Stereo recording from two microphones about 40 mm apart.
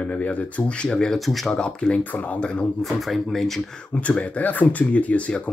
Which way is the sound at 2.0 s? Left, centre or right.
Left.